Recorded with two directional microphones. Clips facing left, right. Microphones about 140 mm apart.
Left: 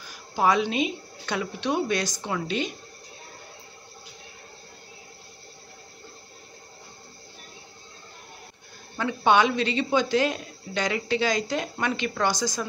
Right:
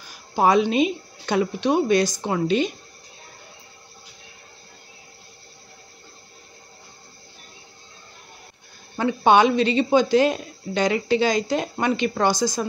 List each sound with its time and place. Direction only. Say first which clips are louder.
0.4 s speech: right 5 dB; 35° right (ahead or behind)
8.9 s speech: right 4 dB; 30° right (ahead or behind)